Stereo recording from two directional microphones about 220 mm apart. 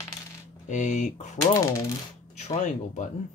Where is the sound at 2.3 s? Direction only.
30° left (ahead or behind).